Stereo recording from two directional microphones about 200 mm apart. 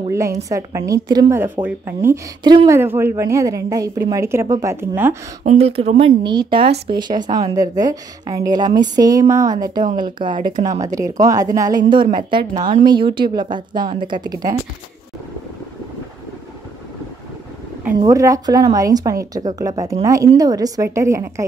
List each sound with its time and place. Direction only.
0.1 s a woman's voice: 15° right (ahead or behind)
5.4 s a woman's voice: 35° right (ahead or behind)
17.9 s a woman's voice: 15° right (ahead or behind)